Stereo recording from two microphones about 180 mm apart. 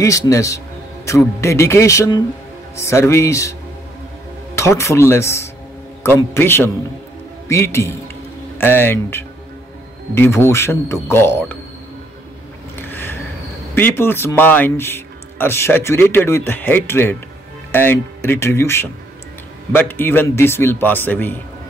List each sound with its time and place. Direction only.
0.3 s speech: 15° left (ahead or behind)
4.6 s speech: 15° left (ahead or behind)
12.8 s a sound: 10° left (ahead or behind)
13.7 s speech: 10° left (ahead or behind)